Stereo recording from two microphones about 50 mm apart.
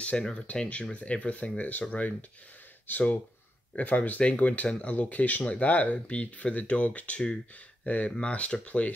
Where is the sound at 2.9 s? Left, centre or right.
Left.